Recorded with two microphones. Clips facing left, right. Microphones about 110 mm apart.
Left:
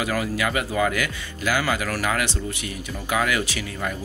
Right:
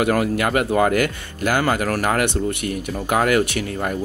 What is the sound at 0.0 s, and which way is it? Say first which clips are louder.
Speech: right 6 dB; 55° right (ahead or behind).